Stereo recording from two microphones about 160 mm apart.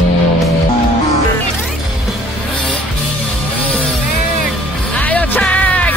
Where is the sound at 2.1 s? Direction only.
Centre (ahead or behind).